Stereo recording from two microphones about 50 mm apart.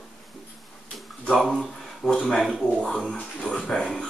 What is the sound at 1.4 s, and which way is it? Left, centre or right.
Speech, centre.